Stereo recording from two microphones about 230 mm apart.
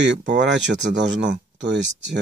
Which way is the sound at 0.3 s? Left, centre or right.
Right.